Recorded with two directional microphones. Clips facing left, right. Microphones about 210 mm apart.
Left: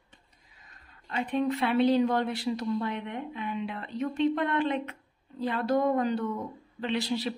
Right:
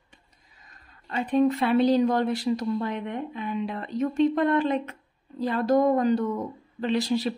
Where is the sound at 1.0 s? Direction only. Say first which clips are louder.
Right 6 dB; 40° right (ahead or behind).